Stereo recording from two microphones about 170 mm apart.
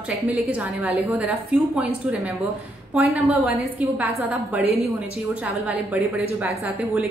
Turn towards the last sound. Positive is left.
turn(degrees=-10)  # may be behind; listen again after turning